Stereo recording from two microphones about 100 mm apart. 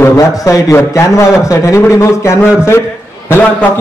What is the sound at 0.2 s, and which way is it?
A man's voice, 35° left (ahead or behind).